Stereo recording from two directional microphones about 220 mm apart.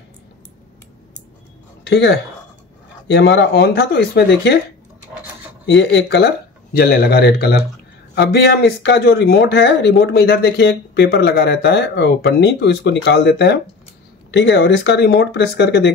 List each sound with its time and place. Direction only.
1.9 s speech: 50° left (ahead or behind)
5.7 s speech: 55° left (ahead or behind)